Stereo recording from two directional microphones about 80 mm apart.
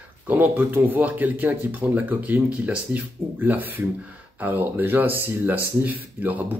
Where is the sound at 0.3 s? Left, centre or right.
Right.